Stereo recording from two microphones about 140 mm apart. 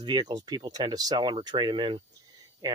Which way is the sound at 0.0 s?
30° right (ahead or behind).